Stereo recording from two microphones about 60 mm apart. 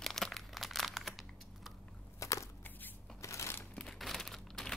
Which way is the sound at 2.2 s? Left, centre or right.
Left.